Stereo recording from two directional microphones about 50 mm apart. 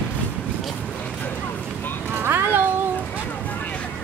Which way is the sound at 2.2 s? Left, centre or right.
Right.